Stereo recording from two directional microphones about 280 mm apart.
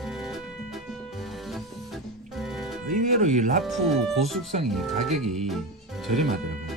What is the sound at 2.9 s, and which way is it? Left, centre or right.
Speech, right.